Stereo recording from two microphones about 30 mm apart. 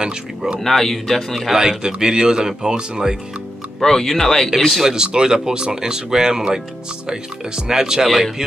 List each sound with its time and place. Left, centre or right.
0.6 s speech: centre
1.5 s speech: centre
3.8 s speech: centre
4.6 s speech: centre
4.9 s speech: right
8.1 s speech: centre